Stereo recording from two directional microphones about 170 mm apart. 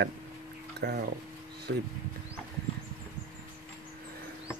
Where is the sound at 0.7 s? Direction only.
70° right (ahead or behind).